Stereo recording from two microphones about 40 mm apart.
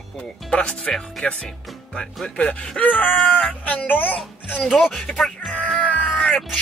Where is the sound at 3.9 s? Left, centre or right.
Left.